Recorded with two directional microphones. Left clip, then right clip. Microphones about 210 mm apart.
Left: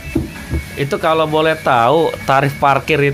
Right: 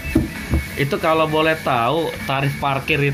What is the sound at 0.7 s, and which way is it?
Speech, 15° left (ahead or behind).